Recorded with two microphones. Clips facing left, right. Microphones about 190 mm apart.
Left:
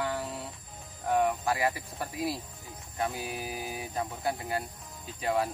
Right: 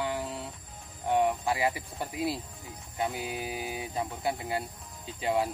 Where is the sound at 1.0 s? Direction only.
20° right (ahead or behind).